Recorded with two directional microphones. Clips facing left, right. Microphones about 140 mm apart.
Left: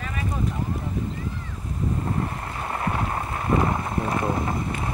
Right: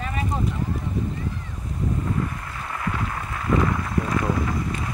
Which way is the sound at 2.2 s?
35° left (ahead or behind).